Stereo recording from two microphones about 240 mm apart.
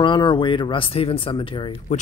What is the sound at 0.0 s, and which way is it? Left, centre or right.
Speech, centre.